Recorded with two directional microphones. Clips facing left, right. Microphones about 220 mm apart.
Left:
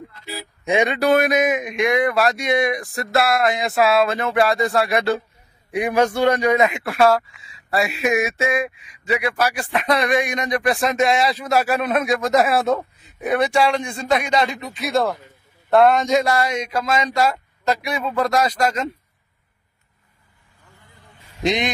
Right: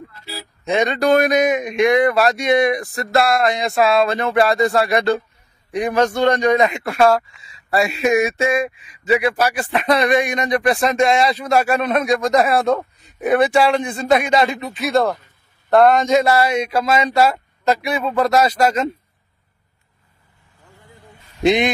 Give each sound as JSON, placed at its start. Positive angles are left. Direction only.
{"t": 0.2, "sound": "speech", "side_deg": 15}
{"t": 18.6, "sound": "a man's voice", "side_deg": -25}
{"t": 21.4, "sound": "a man's voice", "side_deg": -10}